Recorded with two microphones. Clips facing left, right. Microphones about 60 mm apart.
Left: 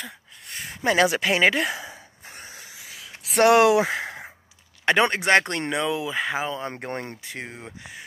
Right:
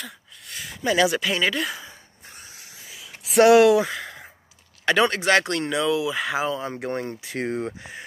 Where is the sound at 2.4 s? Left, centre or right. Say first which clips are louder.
Left 5 dB; left.